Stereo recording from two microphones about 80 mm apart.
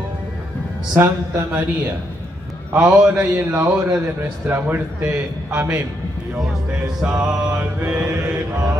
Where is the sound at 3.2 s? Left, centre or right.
Right.